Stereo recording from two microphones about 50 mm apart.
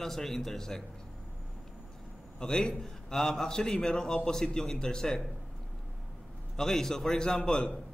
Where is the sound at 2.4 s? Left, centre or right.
Centre.